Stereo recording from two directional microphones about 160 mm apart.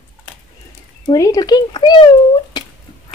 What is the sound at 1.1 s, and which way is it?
Speech, 20° left (ahead or behind).